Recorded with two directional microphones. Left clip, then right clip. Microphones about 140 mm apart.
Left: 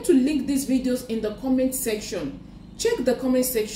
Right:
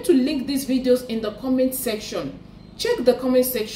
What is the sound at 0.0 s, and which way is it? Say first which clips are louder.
A woman's voice: right 1 dB; 15° right (ahead or behind).